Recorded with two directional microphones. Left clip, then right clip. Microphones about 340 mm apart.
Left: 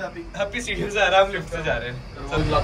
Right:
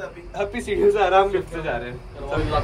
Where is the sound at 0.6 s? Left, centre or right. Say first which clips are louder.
Right 5 dB; centre.